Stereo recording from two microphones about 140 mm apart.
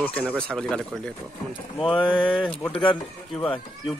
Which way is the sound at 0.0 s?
10° left (ahead or behind).